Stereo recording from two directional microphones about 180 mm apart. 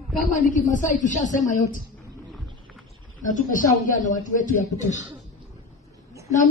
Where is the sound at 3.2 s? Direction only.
45° left (ahead or behind).